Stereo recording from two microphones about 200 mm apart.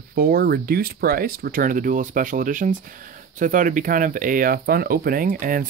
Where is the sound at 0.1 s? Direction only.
50° right (ahead or behind).